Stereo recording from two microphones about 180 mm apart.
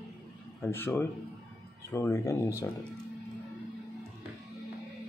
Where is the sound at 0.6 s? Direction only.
10° left (ahead or behind).